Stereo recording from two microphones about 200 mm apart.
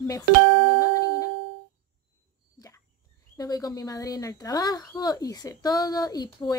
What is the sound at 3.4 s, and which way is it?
A woman's voice, 15° left (ahead or behind).